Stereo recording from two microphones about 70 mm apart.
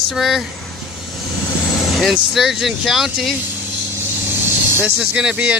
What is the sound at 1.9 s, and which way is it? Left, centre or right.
Speech, centre.